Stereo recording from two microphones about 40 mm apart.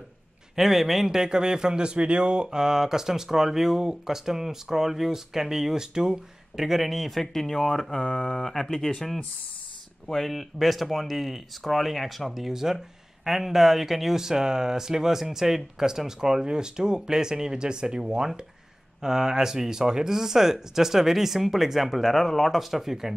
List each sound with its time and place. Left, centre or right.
0.6 s a man's voice: centre
1.2 s a man's voice: centre
22.6 s speech: centre